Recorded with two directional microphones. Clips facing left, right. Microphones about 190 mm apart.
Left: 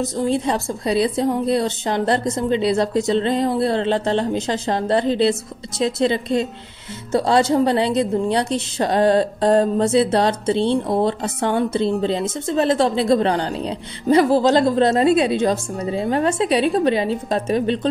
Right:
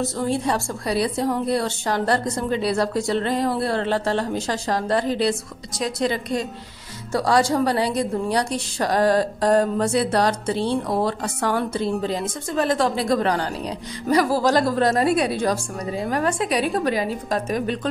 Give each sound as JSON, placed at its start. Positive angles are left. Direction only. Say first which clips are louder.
{"t": 0.0, "sound": "a woman's voice", "louder": "left 3 dB", "side_deg": 20}